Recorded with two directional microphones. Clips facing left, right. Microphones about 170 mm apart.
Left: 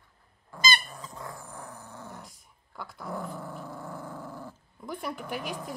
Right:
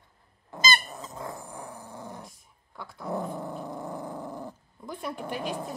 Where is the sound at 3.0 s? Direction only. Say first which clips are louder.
Right 5 dB; 20° right (ahead or behind).